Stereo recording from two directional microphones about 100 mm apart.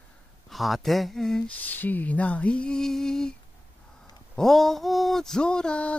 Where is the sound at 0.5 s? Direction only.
Centre (ahead or behind).